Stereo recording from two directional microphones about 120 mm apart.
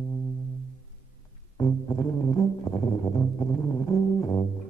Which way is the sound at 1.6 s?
35° left (ahead or behind).